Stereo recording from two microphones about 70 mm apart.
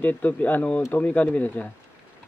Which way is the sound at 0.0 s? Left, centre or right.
Left.